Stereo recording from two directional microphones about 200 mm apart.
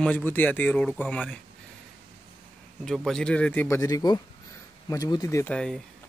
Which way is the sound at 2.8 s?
Centre (ahead or behind).